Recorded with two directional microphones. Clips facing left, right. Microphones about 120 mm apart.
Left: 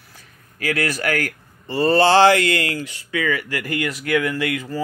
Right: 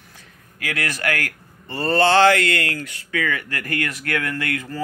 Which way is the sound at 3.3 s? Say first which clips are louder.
Left 2 dB; 10° left (ahead or behind).